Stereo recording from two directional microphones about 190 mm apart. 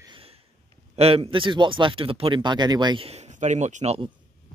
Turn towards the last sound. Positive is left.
turn(degrees=-35)  # may be behind; listen again after turning